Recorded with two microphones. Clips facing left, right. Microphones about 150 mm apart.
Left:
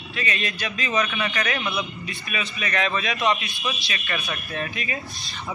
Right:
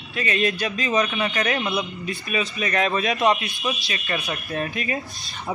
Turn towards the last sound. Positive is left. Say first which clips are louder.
# right 4 dB
turn(degrees=-40)  # may be behind; listen again after turning